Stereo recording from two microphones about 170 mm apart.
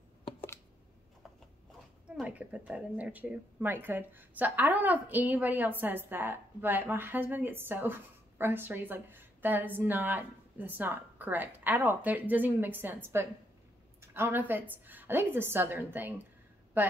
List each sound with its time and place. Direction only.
2.0 s speech: 5° right (ahead or behind)